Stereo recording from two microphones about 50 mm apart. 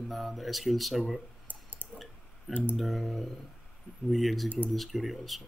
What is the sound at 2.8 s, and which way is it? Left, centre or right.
Speech, centre.